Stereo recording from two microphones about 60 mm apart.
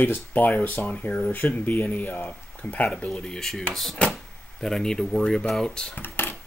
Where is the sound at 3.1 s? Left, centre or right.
Centre.